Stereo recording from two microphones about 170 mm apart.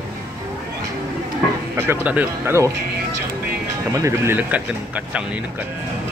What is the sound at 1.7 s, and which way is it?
Speech, 10° right (ahead or behind).